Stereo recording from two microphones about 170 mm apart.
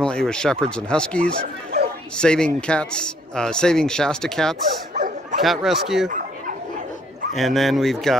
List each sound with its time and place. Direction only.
0.0 s speech: 5° left (ahead or behind)
4.9 s dog: 50° right (ahead or behind)
5.4 s speech: centre (ahead or behind)
6.0 s a sound: 50° right (ahead or behind)
7.3 s speech: centre (ahead or behind)